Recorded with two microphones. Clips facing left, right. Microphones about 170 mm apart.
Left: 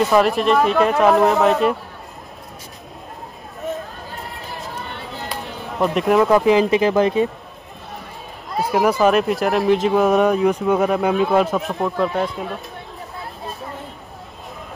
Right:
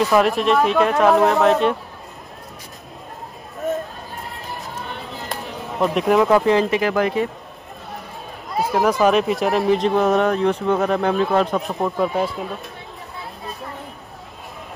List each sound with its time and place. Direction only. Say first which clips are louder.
0.0 s speech: left 1 dB; centre (ahead or behind)
4.7 s a sound: even; centre (ahead or behind)
6.4 s speech: left 3 dB; 15° left (ahead or behind)
8.7 s speech: left 1 dB; 5° left (ahead or behind)